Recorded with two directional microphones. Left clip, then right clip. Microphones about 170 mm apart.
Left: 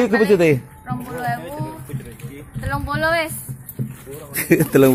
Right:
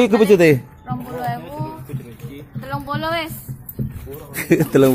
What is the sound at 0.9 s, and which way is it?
Speech, 10° left (ahead or behind).